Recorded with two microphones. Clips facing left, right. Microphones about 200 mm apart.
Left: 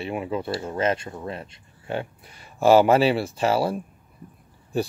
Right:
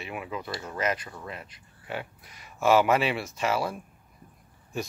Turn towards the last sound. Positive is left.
turn(degrees=35)  # may be behind; listen again after turning